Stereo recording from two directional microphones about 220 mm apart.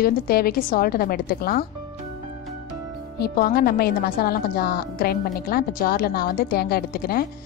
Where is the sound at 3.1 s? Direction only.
45° left (ahead or behind).